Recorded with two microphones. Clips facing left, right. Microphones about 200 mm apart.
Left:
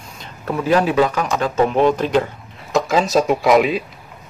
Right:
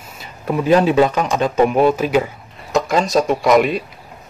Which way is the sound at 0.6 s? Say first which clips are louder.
Right 3 dB; 20° right (ahead or behind).